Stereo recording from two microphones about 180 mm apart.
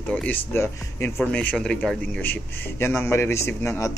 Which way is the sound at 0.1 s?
10° left (ahead or behind).